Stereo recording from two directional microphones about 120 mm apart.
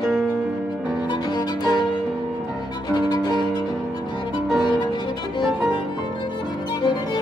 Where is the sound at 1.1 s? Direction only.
35° left (ahead or behind).